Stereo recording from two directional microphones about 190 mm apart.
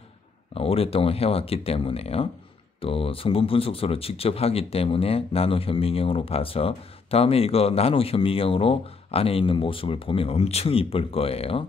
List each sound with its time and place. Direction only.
0.6 s speech: 30° left (ahead or behind)